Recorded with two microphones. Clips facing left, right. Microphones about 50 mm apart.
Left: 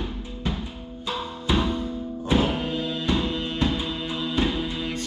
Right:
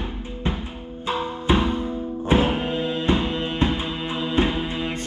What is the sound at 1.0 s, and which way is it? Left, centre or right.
Music, right.